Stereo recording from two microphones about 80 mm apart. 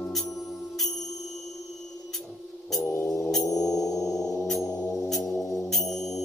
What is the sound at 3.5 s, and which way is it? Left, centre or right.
Gong, left.